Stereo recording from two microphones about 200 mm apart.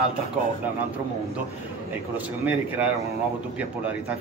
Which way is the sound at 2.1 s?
5° right (ahead or behind).